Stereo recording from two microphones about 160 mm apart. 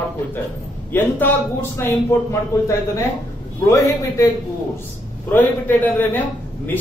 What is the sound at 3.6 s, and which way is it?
Speech, 20° left (ahead or behind).